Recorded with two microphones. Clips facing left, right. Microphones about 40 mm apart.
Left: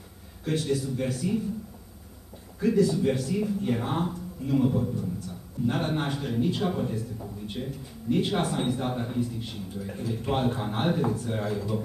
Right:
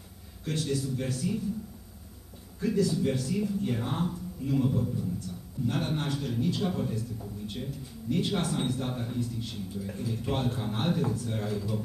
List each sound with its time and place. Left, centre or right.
0.5 s a man's voice: centre
2.6 s a man's voice: centre